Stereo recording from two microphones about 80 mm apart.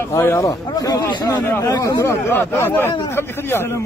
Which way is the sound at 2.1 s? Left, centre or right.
Left.